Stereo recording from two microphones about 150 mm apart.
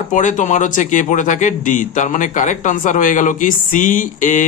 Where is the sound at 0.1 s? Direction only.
55° left (ahead or behind).